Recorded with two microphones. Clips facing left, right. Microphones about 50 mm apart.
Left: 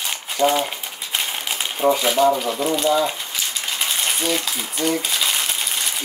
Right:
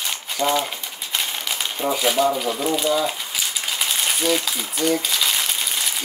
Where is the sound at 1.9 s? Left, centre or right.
Centre.